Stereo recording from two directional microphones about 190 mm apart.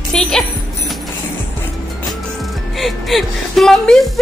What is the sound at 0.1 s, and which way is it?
Music, 5° left (ahead or behind).